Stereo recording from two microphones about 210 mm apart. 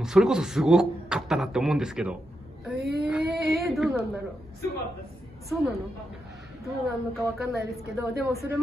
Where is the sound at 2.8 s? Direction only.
50° right (ahead or behind).